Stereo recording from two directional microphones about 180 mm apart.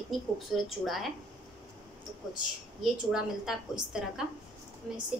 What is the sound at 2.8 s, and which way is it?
A woman's voice, 5° right (ahead or behind).